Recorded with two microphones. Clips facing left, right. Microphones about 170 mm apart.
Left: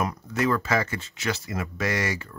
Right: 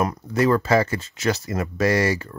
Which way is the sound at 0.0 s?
40° right (ahead or behind).